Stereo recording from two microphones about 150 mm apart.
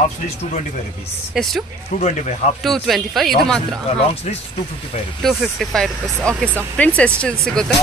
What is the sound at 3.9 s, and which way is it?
Speech, 45° left (ahead or behind).